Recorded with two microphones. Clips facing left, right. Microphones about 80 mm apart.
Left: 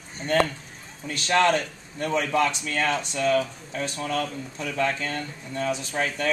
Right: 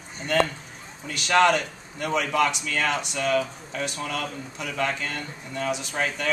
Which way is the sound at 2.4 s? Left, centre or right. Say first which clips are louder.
Right 1 dB; left.